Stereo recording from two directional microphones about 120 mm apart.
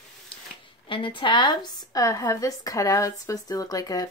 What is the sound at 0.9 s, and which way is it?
Speech, 45° left (ahead or behind).